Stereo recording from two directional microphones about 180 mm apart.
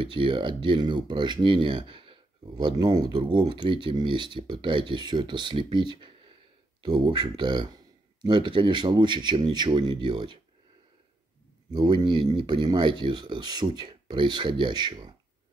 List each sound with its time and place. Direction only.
0.0 s speech: 30° right (ahead or behind)
11.7 s speech: 25° right (ahead or behind)